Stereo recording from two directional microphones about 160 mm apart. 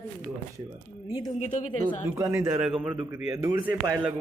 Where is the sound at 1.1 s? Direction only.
25° left (ahead or behind).